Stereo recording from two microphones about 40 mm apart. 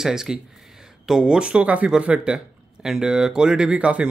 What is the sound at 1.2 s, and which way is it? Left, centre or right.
Speech, right.